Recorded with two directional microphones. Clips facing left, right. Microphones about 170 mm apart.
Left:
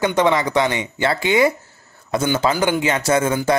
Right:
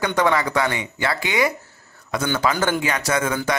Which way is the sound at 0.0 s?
20° left (ahead or behind).